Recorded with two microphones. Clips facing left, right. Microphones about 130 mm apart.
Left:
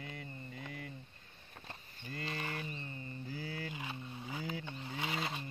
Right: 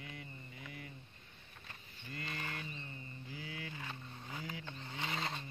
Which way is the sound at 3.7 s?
15° left (ahead or behind).